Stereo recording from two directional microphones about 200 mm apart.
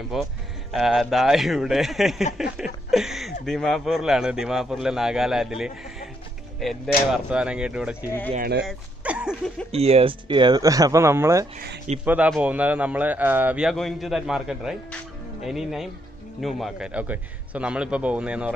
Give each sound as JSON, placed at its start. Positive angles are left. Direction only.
{"t": 0.1, "sound": "a man's voice", "side_deg": 0}
{"t": 2.3, "sound": "a sound", "side_deg": -5}
{"t": 3.4, "sound": "a man's voice", "side_deg": 0}
{"t": 7.1, "sound": "a man's voice", "side_deg": -5}
{"t": 8.3, "sound": "speech", "side_deg": -50}
{"t": 8.6, "sound": "a sound", "side_deg": -5}
{"t": 9.7, "sound": "a man's voice", "side_deg": -30}